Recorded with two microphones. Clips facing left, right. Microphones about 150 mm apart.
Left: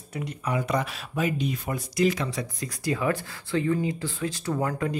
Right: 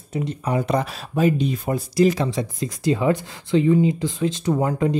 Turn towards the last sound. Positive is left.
turn(degrees=-20)  # may be behind; listen again after turning